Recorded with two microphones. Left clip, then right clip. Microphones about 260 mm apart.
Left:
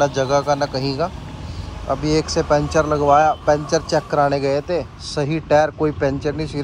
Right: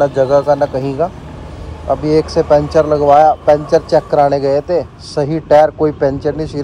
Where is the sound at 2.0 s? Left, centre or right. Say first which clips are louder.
Right 7 dB; left.